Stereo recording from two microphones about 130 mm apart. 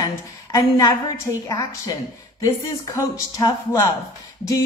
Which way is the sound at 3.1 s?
25° left (ahead or behind).